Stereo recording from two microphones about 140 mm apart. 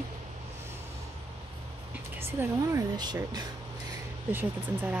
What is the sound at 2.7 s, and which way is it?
Speech, 30° right (ahead or behind).